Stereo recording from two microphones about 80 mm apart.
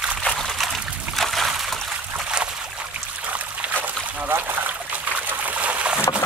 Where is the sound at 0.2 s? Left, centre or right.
Centre.